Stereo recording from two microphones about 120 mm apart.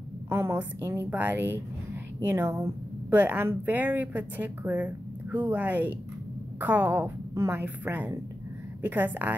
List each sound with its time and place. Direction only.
0.3 s a woman's voice: 20° right (ahead or behind)